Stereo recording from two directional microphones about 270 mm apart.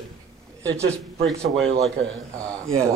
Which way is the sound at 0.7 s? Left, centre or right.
Right.